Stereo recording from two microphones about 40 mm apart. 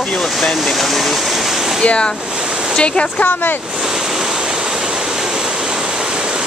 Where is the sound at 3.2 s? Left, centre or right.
Left.